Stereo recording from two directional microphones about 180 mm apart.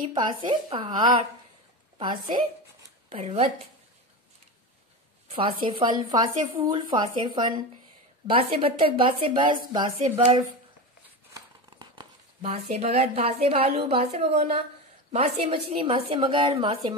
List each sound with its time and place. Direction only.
0.0 s a woman's voice: 25° right (ahead or behind)
5.3 s speech: 30° right (ahead or behind)
11.3 s scissors: 25° right (ahead or behind)
12.7 s a woman's voice: 35° right (ahead or behind)